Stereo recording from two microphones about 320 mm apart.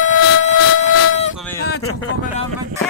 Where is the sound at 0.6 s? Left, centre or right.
Left.